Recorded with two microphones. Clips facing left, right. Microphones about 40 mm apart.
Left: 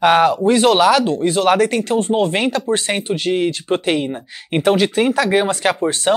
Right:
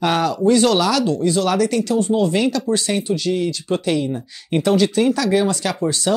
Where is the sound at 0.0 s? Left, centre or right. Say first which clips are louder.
Left 5 dB; left.